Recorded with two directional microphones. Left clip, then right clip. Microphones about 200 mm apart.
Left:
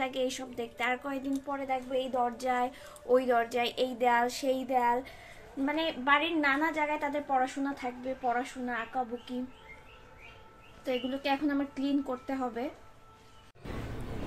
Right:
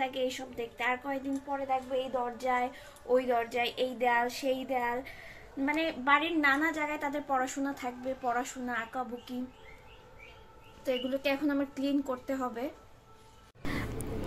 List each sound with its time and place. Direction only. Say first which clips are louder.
0.0 s a woman's voice: even; 35° left (ahead or behind)
10.9 s a woman's voice: even; 20° left (ahead or behind)